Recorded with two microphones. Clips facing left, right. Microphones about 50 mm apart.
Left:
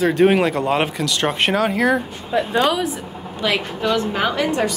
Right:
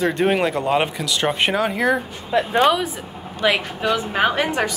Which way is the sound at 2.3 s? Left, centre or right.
Right.